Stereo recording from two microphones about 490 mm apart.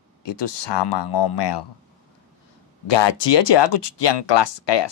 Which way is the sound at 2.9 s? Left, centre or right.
Left.